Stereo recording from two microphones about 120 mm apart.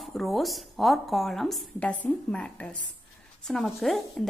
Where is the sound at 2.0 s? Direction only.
10° left (ahead or behind).